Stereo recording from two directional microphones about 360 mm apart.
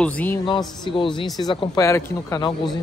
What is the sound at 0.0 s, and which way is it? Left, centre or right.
A man's voice, centre.